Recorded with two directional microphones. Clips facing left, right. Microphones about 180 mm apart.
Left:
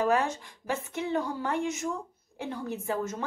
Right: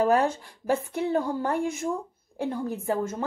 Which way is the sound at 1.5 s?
55° right (ahead or behind).